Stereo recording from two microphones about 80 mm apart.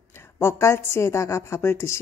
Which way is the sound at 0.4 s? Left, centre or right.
Left.